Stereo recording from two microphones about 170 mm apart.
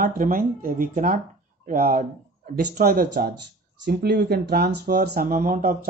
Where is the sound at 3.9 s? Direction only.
80° right; by 5.7 s 50° right (ahead or behind).